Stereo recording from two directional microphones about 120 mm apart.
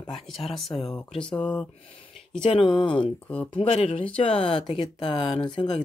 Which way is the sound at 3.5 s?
55° left (ahead or behind).